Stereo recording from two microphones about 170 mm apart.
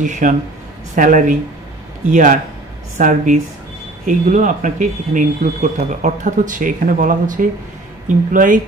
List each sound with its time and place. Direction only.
0.0 s speech: 50° right (ahead or behind)